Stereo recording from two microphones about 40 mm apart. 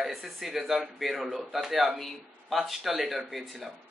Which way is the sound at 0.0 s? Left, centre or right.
Centre.